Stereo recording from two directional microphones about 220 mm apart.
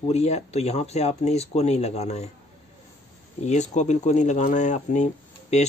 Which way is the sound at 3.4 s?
30° left (ahead or behind).